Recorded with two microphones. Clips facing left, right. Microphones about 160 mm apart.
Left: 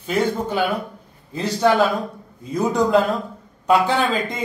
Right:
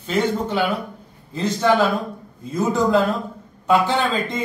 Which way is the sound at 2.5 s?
5° right (ahead or behind).